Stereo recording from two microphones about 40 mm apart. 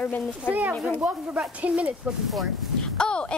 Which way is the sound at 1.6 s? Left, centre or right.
Right.